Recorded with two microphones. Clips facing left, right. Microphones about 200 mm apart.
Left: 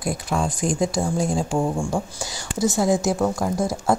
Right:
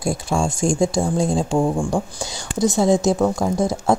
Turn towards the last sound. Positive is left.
turn(degrees=0)  # may be behind; listen again after turning